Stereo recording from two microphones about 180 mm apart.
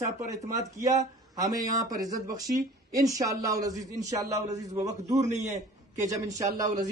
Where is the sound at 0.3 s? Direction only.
20° right (ahead or behind).